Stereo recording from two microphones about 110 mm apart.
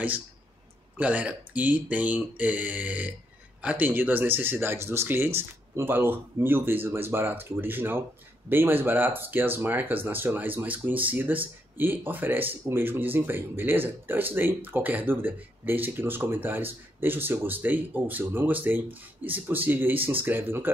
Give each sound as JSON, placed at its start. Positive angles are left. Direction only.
{"t": 0.9, "sound": "speech", "side_deg": -15}